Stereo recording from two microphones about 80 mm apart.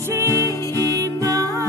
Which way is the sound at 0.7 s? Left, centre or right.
Left.